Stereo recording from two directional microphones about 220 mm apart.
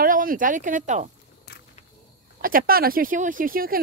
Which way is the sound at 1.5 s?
45° left (ahead or behind).